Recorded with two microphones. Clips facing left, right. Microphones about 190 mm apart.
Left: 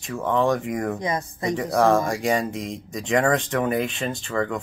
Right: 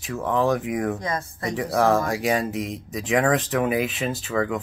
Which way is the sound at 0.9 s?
20° left (ahead or behind).